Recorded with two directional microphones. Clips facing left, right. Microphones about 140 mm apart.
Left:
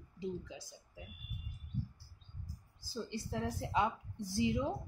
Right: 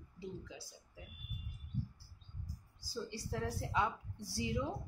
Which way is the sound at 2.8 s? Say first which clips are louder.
Left 2 dB; 20° left (ahead or behind).